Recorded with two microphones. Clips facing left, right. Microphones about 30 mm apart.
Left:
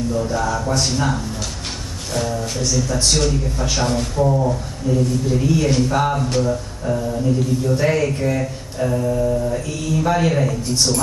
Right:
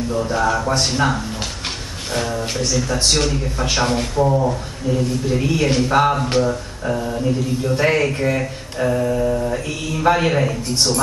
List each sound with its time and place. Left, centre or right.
0.1 s speech: right